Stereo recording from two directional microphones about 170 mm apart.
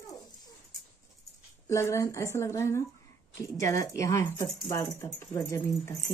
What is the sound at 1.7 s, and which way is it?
Speech, 15° left (ahead or behind).